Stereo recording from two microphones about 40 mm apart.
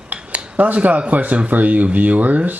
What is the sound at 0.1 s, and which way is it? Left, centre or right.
Cutlery, right.